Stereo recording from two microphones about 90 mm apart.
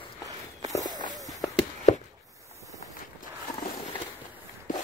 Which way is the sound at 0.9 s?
45° right (ahead or behind).